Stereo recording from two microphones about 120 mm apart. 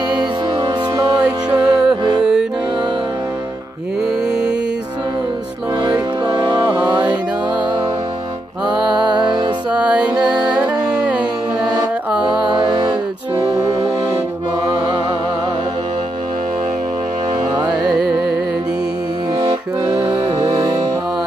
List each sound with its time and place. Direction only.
0.1 s music: 35° right (ahead or behind)
1.2 s music: 10° right (ahead or behind)
4.3 s music: 5° right (ahead or behind)
5.8 s music: 35° right (ahead or behind)
6.6 s music: 15° right (ahead or behind)
9.1 s music: 40° right (ahead or behind)
9.8 s music: 10° right (ahead or behind)
12.5 s music: 40° right (ahead or behind)
13.5 s music: 25° right (ahead or behind)
17.6 s carnatic music: 40° right (ahead or behind)
19.8 s music: 25° right (ahead or behind)